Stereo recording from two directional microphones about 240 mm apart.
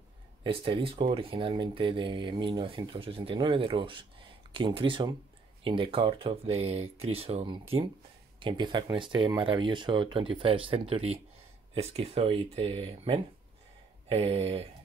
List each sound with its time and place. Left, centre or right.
0.4 s speech: right